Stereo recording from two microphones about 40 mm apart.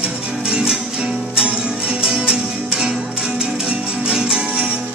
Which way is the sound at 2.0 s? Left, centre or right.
Right.